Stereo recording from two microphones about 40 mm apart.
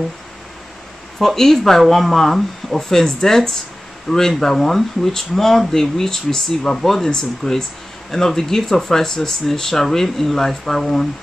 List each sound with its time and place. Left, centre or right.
1.2 s speech: centre